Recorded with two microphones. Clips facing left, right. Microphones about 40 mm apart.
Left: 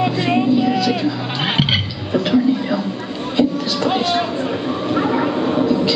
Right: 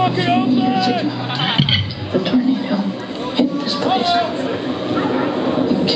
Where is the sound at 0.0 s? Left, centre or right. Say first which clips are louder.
Right 1 dB; right.